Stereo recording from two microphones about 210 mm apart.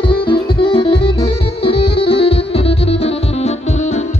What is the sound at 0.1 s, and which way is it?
Music, 25° left (ahead or behind).